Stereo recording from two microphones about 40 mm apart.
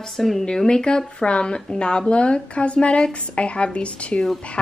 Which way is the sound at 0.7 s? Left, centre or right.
Centre.